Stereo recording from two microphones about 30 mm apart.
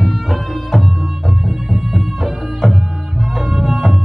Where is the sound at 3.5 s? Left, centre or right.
Centre.